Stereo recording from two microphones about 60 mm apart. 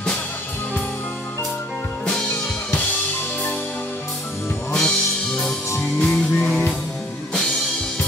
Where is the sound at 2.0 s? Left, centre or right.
Centre.